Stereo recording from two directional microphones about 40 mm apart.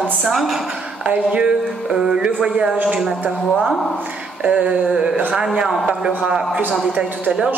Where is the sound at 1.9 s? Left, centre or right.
Centre.